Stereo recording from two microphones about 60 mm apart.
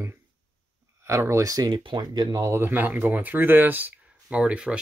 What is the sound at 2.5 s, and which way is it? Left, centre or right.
Speech, right.